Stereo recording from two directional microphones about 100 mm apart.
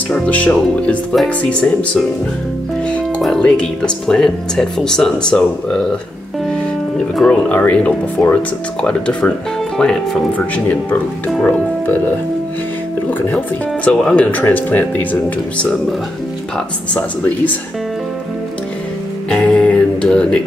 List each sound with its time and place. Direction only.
0.1 s speech: 10° left (ahead or behind)
3.2 s speech: 5° left (ahead or behind)
7.2 s speech: 15° left (ahead or behind)
13.8 s speech: 10° left (ahead or behind)
19.2 s music: 10° left (ahead or behind)